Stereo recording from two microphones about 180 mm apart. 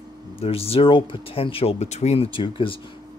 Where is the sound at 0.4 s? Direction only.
35° left (ahead or behind).